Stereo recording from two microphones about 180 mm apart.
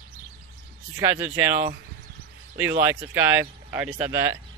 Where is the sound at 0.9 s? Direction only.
15° right (ahead or behind).